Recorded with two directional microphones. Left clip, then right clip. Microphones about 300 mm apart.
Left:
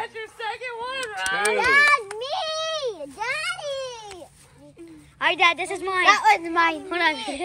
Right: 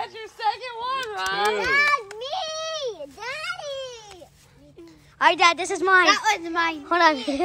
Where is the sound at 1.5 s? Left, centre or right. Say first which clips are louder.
Left 6 dB; centre.